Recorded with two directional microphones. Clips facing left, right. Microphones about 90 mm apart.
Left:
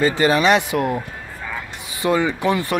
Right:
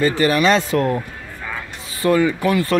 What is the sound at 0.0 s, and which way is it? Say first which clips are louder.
Speech: even; 20° left (ahead or behind).